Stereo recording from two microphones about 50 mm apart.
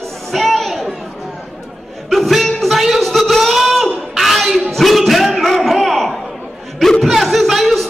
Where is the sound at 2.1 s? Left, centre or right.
Centre.